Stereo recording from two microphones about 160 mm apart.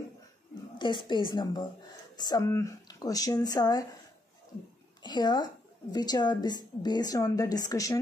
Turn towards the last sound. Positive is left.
turn(degrees=20)  # may be behind; listen again after turning